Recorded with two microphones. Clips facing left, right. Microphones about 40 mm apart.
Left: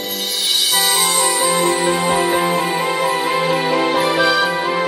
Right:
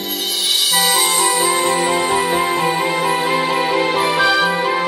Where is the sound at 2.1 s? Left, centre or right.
Left.